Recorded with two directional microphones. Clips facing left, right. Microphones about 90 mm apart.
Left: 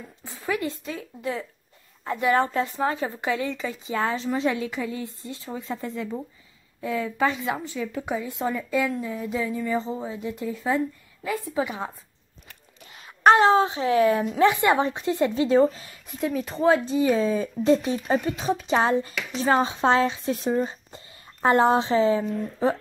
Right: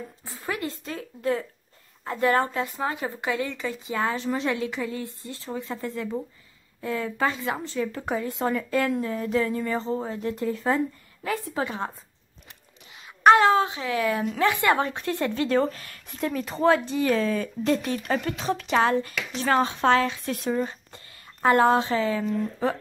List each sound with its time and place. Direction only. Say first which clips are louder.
0.2 s a sound: left 5 dB; 30° right (ahead or behind)
0.6 s a woman's voice: left 2 dB; 20° left (ahead or behind); by 11.6 s centre (ahead or behind)
11.6 s a woman's voice: right 1 dB; 15° left (ahead or behind)
12.9 s speech: even; 35° left (ahead or behind); by 16.2 s 20° left (ahead or behind)
16.2 s speech: even; 5° left (ahead or behind)
16.9 s a woman's voice: left 2 dB; 15° left (ahead or behind)
18.7 s speech: even; 25° left (ahead or behind)